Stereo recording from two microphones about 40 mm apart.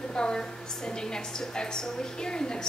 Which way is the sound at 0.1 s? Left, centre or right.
Left.